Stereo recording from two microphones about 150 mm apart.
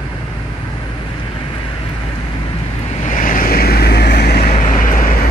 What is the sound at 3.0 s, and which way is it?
Vehicle, 65° left (ahead or behind).